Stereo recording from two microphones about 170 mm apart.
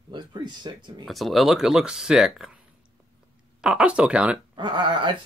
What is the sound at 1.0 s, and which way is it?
Speech, centre (ahead or behind).